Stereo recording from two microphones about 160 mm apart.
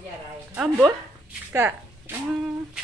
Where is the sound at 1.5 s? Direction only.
15° right (ahead or behind).